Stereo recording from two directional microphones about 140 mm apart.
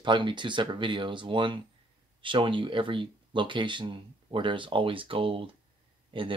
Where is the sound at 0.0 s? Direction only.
35° right (ahead or behind).